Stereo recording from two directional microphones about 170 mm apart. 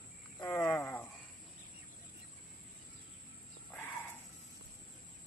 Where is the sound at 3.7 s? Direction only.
10° left (ahead or behind).